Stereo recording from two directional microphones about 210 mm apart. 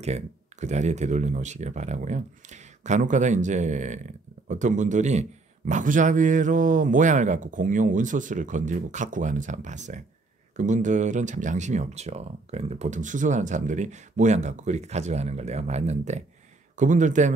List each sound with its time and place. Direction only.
0.0 s speech: 30° right (ahead or behind)